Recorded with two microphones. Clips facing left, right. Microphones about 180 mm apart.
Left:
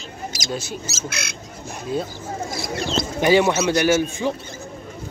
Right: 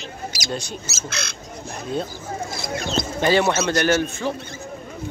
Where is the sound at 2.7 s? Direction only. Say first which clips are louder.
Even; 30° left (ahead or behind).